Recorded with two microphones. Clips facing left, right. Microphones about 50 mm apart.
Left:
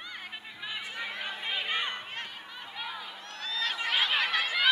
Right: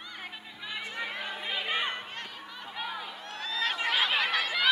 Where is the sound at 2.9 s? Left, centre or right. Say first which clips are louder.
Right 2 dB; centre.